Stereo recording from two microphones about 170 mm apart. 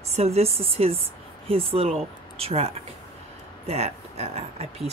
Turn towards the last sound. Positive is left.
turn(degrees=-40)  # may be behind; listen again after turning